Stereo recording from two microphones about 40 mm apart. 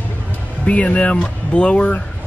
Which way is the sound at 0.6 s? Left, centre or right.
Left.